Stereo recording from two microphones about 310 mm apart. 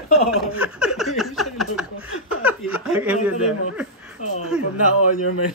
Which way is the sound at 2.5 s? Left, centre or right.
Centre.